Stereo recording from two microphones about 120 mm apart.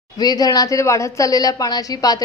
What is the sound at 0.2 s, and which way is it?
A woman's voice, 30° left (ahead or behind).